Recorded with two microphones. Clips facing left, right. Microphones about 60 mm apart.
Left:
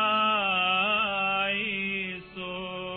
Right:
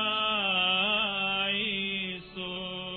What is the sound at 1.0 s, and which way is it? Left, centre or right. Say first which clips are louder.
Mantra: left 4 dB; left.